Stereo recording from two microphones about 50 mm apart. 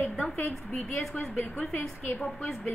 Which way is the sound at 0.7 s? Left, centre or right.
Centre.